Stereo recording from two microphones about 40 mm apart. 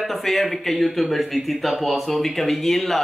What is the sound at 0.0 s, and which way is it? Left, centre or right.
Speech, centre.